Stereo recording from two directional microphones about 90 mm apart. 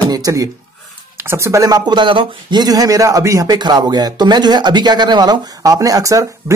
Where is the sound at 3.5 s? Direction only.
50° right (ahead or behind).